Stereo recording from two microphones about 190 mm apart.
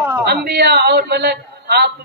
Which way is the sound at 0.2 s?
60° right (ahead or behind).